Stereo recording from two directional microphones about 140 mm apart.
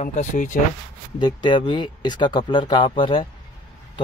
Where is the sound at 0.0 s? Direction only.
60° left (ahead or behind).